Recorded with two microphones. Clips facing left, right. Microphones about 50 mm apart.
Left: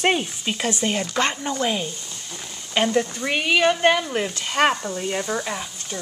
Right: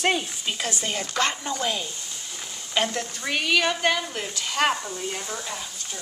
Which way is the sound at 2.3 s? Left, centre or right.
Centre.